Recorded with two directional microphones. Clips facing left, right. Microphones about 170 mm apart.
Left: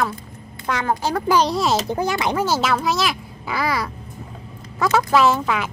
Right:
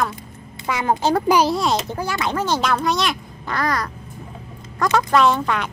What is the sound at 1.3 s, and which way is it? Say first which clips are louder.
Speech: even; 5° right (ahead or behind).